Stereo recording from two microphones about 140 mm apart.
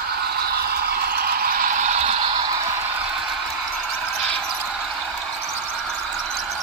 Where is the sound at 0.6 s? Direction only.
90° right; by 2.5 s 35° right (ahead or behind).